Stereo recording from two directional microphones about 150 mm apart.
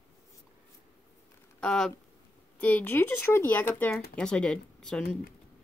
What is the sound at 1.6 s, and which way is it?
Speech, 5° left (ahead or behind).